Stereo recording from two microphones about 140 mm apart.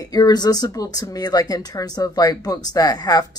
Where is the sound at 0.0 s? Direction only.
25° left (ahead or behind).